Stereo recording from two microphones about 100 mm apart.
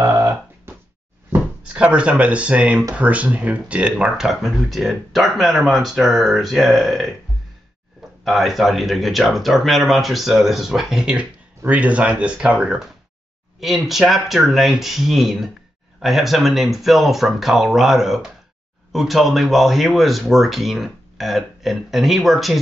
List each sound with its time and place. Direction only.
0.1 s a sound: 15° right (ahead or behind)
1.7 s speech: 10° right (ahead or behind)
8.2 s speech: centre (ahead or behind)